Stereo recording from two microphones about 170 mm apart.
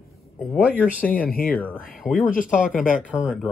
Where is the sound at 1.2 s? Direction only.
60° left (ahead or behind).